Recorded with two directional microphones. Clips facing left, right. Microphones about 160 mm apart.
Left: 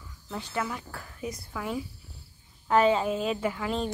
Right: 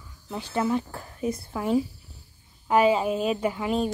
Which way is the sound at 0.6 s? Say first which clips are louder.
Right 9 dB; 30° right (ahead or behind).